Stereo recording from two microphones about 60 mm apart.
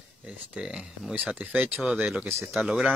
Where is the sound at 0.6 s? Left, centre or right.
Centre.